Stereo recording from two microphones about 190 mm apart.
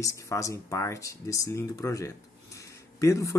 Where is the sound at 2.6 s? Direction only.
15° left (ahead or behind).